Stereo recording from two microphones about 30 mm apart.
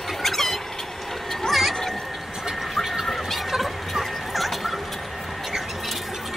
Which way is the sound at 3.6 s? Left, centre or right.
Centre.